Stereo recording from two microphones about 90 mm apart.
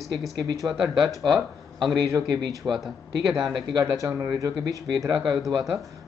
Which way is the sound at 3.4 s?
60° right (ahead or behind).